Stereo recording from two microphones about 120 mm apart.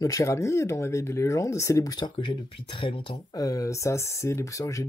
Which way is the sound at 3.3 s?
30° left (ahead or behind).